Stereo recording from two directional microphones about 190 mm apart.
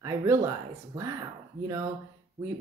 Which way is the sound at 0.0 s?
15° right (ahead or behind).